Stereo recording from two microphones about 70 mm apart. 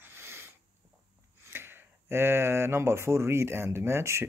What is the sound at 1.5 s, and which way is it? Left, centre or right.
Speech, right.